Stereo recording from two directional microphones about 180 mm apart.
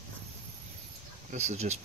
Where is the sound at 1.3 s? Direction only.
40° right (ahead or behind).